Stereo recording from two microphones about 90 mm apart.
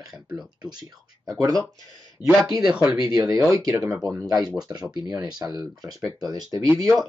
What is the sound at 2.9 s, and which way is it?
Speech, 45° right (ahead or behind).